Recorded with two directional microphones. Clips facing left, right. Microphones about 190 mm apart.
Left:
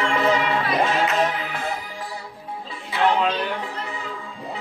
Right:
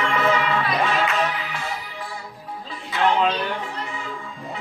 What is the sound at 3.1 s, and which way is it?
Speech, centre (ahead or behind).